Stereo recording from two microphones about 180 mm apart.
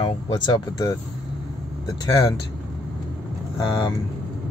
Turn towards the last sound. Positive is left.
turn(degrees=25)  # may be behind; listen again after turning